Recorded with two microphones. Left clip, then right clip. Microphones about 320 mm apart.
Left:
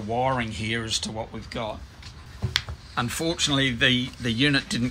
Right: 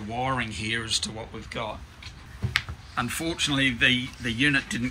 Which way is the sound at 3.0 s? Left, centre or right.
Left.